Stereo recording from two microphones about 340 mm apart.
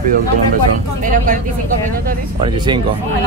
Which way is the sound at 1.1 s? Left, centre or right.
Right.